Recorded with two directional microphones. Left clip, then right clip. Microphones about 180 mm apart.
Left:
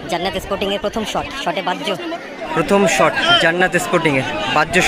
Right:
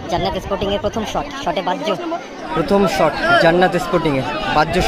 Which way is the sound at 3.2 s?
55° right (ahead or behind).